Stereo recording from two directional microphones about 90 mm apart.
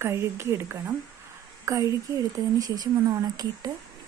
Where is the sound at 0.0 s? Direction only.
30° right (ahead or behind).